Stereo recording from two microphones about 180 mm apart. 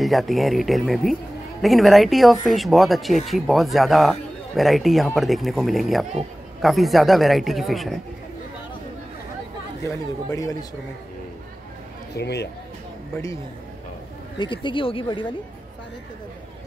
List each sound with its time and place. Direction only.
0.0 s speech: centre (ahead or behind)
9.8 s speech: 20° left (ahead or behind)
12.1 s speech: 70° left (ahead or behind)
14.4 s speech: 25° left (ahead or behind)